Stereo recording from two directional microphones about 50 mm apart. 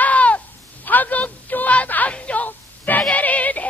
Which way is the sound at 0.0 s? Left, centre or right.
Left.